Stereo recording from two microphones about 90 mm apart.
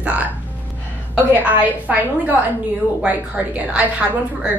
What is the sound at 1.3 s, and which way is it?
A woman's voice, 20° right (ahead or behind).